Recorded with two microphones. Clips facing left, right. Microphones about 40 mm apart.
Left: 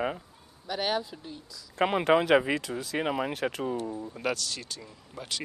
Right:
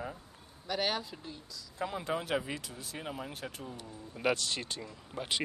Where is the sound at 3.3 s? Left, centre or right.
Left.